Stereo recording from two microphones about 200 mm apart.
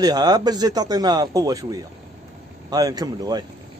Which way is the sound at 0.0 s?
20° right (ahead or behind).